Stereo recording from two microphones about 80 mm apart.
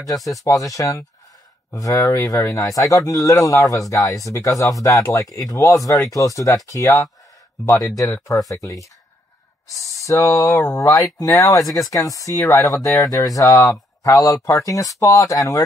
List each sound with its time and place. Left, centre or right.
0.2 s speech: centre
0.5 s speech: left
9.8 s speech: left